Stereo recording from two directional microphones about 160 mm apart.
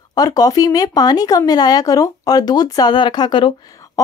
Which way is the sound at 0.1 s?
25° left (ahead or behind).